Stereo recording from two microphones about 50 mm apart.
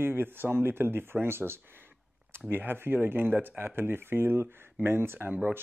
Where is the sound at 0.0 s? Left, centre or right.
Right.